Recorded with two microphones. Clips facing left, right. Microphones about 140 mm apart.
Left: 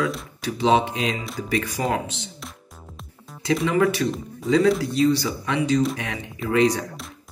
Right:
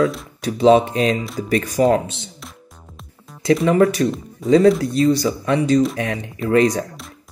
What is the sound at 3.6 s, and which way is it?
Speech, 35° right (ahead or behind).